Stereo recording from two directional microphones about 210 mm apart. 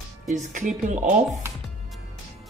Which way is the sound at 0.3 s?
35° right (ahead or behind).